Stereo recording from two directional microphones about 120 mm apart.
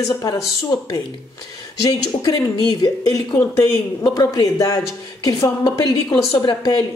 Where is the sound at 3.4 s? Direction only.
25° left (ahead or behind).